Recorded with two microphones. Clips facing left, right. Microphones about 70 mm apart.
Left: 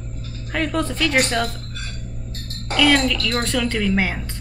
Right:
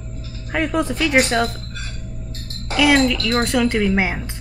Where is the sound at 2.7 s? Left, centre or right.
Centre.